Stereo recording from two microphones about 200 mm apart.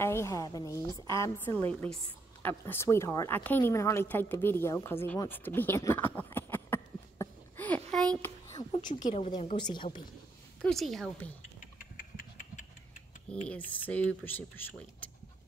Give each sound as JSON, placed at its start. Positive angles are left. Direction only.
{"t": 0.0, "sound": "a woman's voice", "side_deg": 15}
{"t": 8.2, "sound": "a sound", "side_deg": 15}
{"t": 9.1, "sound": "a woman's voice", "side_deg": 30}
{"t": 10.6, "sound": "a woman's voice", "side_deg": 0}
{"t": 12.0, "sound": "a sound", "side_deg": 40}
{"t": 13.5, "sound": "a woman's voice", "side_deg": 5}